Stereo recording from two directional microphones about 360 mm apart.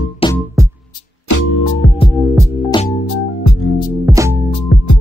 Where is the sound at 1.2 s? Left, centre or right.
Left.